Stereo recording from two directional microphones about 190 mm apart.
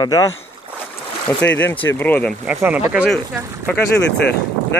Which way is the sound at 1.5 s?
10° left (ahead or behind).